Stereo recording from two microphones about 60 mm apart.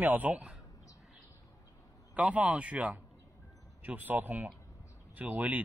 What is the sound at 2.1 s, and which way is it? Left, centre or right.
Speech, right.